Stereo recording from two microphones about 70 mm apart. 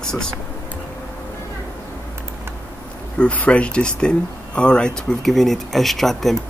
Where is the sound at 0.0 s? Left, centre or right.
Centre.